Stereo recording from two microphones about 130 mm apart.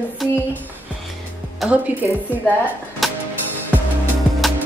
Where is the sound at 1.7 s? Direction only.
10° right (ahead or behind).